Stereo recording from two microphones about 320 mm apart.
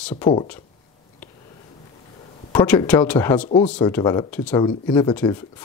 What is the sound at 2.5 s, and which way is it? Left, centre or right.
Speech, centre.